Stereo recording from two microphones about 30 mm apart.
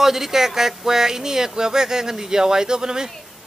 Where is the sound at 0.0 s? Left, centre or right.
Centre.